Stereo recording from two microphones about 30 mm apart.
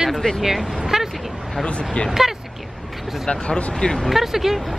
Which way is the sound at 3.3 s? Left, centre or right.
Left.